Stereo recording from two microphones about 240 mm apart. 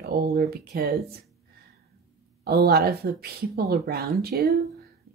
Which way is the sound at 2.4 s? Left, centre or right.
Right.